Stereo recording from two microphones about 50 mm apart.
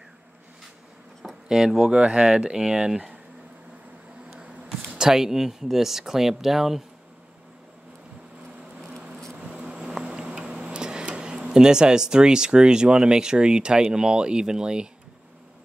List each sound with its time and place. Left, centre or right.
1.5 s speech: centre
1.9 s speech: right
4.9 s speech: centre
9.5 s a sound: centre
10.0 s tick-tock: centre
11.3 s speech: centre